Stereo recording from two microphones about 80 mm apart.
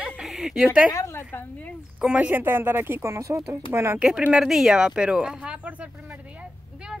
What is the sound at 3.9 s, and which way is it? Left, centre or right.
Speech, centre.